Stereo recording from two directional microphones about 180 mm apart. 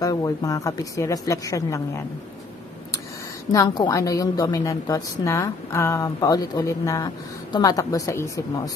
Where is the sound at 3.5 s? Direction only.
20° left (ahead or behind).